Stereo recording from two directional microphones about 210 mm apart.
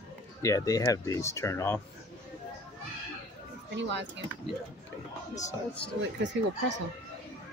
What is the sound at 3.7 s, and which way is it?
Speech, 60° right (ahead or behind).